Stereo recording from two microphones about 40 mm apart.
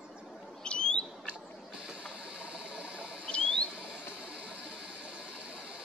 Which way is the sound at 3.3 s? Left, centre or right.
Left.